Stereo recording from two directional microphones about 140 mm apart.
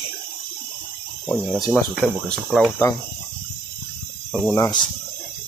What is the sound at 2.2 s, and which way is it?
Cricket, 5° left (ahead or behind).